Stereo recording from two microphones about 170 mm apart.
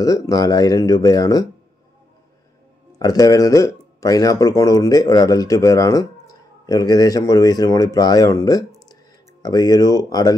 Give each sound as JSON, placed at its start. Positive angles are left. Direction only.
{"t": 0.0, "sound": "speech", "side_deg": 20}
{"t": 3.0, "sound": "speech", "side_deg": 20}